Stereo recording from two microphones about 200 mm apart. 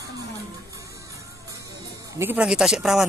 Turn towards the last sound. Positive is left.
turn(degrees=0)  # may be behind; listen again after turning